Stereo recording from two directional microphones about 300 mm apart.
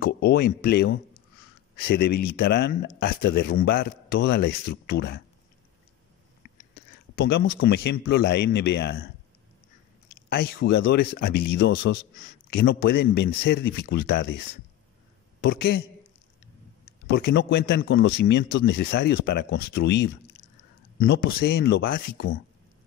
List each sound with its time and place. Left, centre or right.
0.0 s speech: left
6.4 s a sound: left
7.2 s speech: left
10.3 s speech: left
15.4 s speech: left
17.1 s speech: left